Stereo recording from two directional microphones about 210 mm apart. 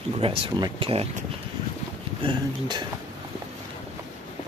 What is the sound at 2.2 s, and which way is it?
Speech, 20° right (ahead or behind).